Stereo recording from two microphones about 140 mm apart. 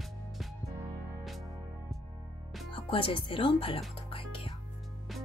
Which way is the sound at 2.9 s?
40° left (ahead or behind).